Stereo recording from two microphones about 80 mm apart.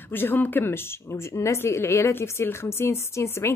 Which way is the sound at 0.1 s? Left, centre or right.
Left.